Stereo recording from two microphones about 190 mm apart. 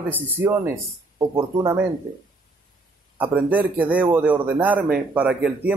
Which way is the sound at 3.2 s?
10° right (ahead or behind).